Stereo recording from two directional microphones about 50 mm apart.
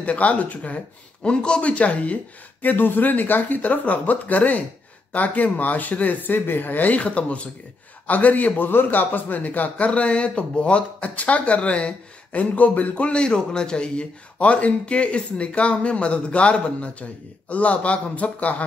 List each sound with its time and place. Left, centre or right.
0.0 s a man's voice: left
1.2 s a man's voice: centre
2.6 s a man's voice: left